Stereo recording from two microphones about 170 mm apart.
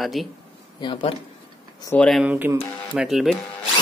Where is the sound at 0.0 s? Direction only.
Centre (ahead or behind).